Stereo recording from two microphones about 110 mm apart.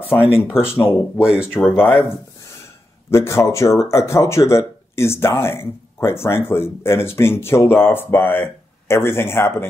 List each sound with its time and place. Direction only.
0.1 s speech: 25° left (ahead or behind)
1.2 s speech: 10° right (ahead or behind)
1.5 s speech: 15° left (ahead or behind)
3.1 s speech: 25° left (ahead or behind)